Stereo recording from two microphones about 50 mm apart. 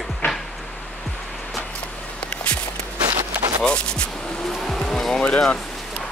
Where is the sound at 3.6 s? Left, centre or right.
Centre.